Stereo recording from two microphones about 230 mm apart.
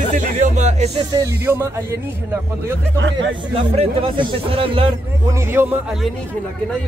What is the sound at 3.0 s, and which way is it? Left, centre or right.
Speech, right.